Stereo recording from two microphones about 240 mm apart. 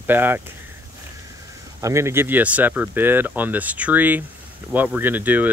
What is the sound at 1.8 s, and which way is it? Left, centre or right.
Speech, centre.